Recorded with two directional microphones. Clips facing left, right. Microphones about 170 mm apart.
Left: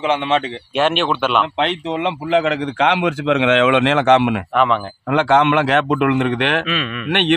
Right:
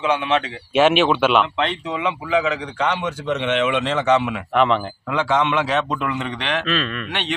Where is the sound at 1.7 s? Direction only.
80° left; by 6.6 s 60° left (ahead or behind).